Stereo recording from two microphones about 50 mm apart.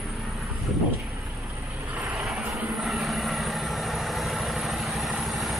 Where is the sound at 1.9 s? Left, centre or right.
Right.